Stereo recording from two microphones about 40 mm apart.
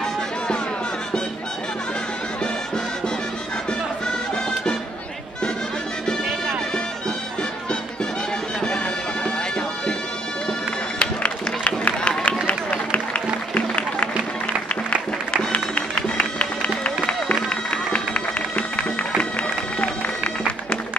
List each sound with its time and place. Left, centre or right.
8.5 s music: left
11.0 s music: left
12.4 s run: left
13.6 s music: left
15.3 s music: left